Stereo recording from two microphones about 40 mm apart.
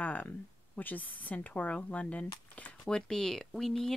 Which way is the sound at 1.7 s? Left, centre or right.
Left.